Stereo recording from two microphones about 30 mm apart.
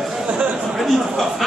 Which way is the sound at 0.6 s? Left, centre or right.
Centre.